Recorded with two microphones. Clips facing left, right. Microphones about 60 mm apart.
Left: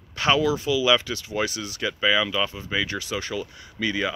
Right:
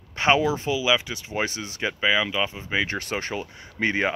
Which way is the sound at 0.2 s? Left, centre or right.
Right.